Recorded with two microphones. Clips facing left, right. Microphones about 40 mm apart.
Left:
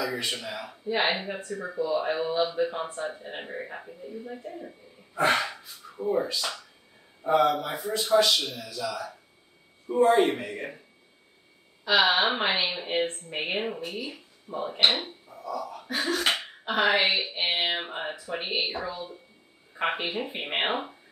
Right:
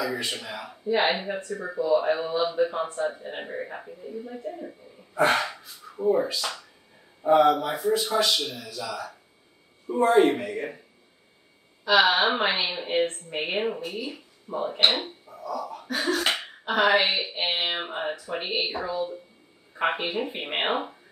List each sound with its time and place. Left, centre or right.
0.0 s speech: centre
1.5 s speech: centre
1.8 s speech: centre
11.8 s speech: centre
15.5 s a sound: centre
16.0 s speech: centre
16.3 s a sound: centre
17.2 s speech: centre